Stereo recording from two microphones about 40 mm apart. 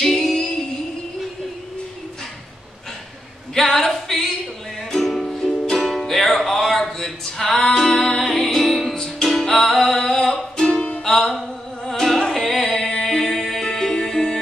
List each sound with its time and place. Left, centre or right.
0.0 s music: centre
3.5 s a sound: centre
5.0 s music: centre